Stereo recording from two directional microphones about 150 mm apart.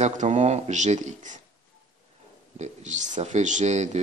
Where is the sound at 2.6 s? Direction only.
50° right (ahead or behind).